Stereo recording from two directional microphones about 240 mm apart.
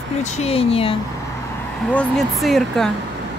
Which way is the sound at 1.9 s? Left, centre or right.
Centre.